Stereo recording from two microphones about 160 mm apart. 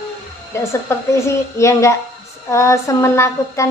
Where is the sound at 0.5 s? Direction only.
15° left (ahead or behind).